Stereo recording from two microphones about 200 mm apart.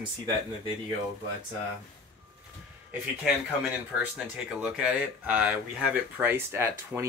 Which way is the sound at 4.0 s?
5° right (ahead or behind).